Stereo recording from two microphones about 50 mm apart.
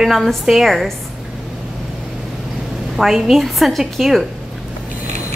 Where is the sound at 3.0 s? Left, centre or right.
Centre.